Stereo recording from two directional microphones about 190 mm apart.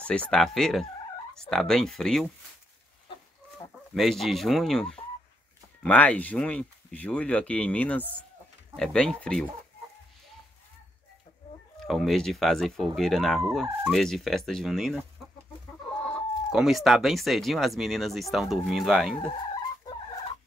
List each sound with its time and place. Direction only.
0.0 s speech: 5° left (ahead or behind)
3.9 s speech: centre (ahead or behind)
11.9 s speech: centre (ahead or behind)
16.4 s speech: centre (ahead or behind)